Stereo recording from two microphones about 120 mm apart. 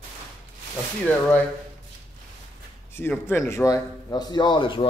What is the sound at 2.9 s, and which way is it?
A man's voice, 15° left (ahead or behind).